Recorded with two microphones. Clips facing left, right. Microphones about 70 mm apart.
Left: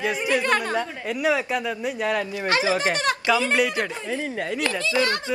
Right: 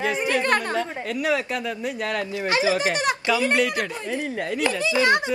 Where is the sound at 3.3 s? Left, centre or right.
Centre.